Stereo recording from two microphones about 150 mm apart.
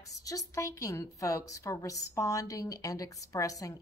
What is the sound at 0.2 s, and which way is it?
A woman's voice, 20° left (ahead or behind).